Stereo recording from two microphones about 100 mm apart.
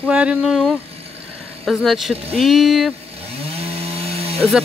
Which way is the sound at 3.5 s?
85° right.